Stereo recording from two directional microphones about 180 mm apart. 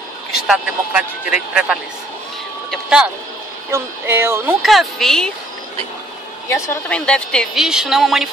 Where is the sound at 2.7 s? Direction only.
5° right (ahead or behind).